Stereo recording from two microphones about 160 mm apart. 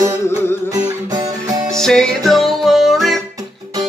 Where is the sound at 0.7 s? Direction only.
20° right (ahead or behind).